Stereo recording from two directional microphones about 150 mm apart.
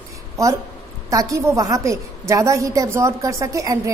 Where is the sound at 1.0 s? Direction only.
20° right (ahead or behind).